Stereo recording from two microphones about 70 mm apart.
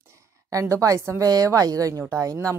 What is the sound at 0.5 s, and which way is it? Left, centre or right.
Speech, right.